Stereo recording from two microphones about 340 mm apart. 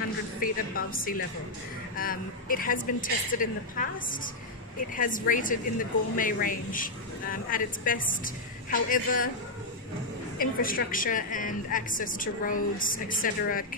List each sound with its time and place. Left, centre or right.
0.4 s a woman's voice: left
10.4 s a woman's voice: left